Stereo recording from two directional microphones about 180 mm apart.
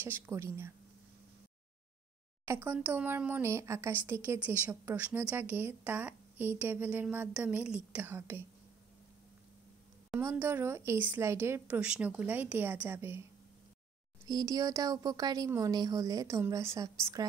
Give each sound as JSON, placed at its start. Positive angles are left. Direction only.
{"t": 0.0, "sound": "speech", "side_deg": -15}
{"t": 2.4, "sound": "speech", "side_deg": -15}
{"t": 10.1, "sound": "speech", "side_deg": -10}
{"t": 14.2, "sound": "speech", "side_deg": -20}